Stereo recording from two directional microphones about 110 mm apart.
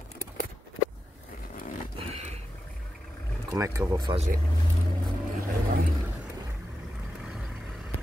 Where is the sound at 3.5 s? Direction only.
30° right (ahead or behind).